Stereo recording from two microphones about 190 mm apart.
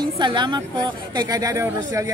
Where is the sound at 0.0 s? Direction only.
25° right (ahead or behind).